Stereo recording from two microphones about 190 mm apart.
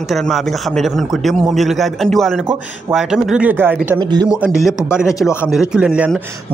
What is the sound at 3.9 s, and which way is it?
Speech, 20° right (ahead or behind).